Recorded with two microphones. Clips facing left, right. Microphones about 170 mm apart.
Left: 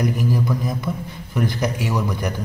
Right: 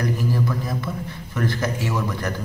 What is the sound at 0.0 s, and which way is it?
A man's voice, 15° left (ahead or behind).